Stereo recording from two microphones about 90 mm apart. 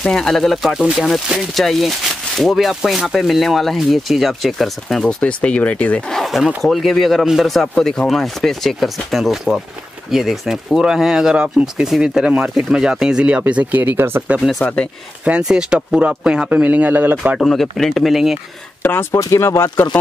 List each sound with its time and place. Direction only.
0.0 s speech: 5° left (ahead or behind)
6.1 s speech: centre (ahead or behind); by 14.2 s 25° right (ahead or behind)
14.6 s speech: 15° left (ahead or behind)
15.2 s speech: 10° right (ahead or behind)
17.4 s speech: centre (ahead or behind)
18.8 s speech: 25° left (ahead or behind)